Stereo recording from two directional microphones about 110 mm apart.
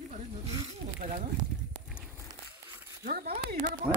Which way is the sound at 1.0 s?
90° right.